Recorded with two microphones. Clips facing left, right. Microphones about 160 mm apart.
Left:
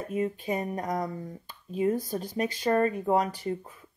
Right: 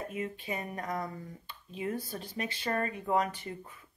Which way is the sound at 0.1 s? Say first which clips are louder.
Left 8 dB; 40° left (ahead or behind).